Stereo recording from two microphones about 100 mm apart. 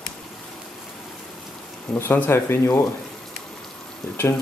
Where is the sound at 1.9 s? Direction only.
20° left (ahead or behind).